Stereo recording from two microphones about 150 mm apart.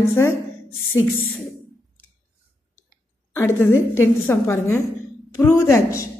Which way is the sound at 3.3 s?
15° left (ahead or behind).